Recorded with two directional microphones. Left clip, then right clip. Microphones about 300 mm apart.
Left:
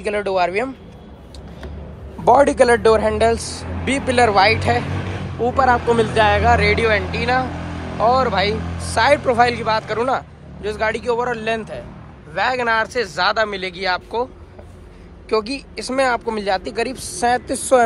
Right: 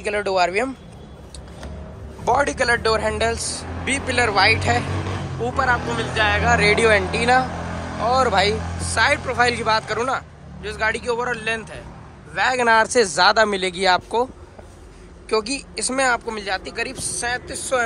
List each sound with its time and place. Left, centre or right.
0.0 s speech: centre
2.2 s speech: centre